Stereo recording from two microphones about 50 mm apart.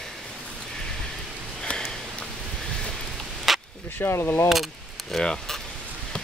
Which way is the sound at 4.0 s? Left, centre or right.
Left.